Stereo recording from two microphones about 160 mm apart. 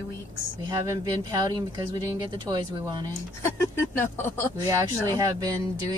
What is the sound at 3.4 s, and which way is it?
Speech, 15° left (ahead or behind).